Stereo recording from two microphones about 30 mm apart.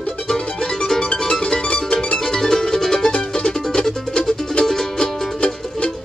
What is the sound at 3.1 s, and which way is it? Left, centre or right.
Music, left.